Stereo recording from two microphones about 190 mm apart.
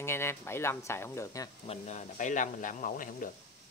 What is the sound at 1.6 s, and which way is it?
Speech, 40° left (ahead or behind).